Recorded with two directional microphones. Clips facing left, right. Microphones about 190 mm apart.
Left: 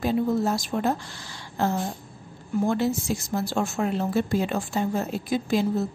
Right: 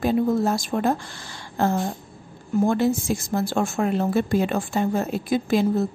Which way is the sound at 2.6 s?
50° right (ahead or behind).